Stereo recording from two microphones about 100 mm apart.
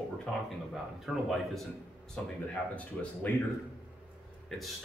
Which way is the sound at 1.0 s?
Centre (ahead or behind).